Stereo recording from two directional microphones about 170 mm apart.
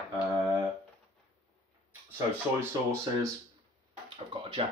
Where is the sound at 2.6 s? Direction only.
15° right (ahead or behind).